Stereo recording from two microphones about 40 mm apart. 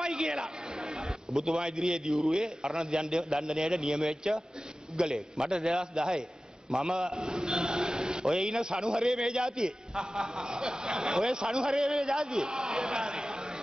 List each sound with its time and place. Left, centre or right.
0.0 s a sound: centre
1.6 s a man's voice: centre
2.1 s a man's voice: centre